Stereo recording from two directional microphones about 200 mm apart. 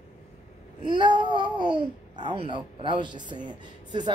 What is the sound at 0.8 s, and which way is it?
A child's voice, 20° right (ahead or behind).